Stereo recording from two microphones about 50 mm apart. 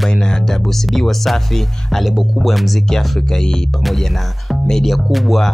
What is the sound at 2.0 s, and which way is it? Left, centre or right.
Speech, centre.